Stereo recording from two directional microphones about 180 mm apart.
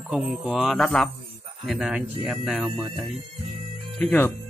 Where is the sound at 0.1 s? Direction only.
5° right (ahead or behind).